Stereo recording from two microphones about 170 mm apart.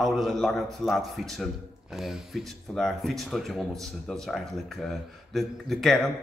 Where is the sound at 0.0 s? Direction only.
Centre (ahead or behind).